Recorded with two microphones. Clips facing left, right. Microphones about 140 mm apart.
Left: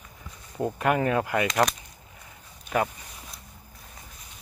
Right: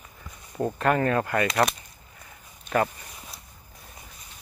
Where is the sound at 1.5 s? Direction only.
5° right (ahead or behind).